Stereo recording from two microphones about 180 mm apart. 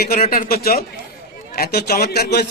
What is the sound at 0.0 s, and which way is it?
A man's voice, 55° left (ahead or behind).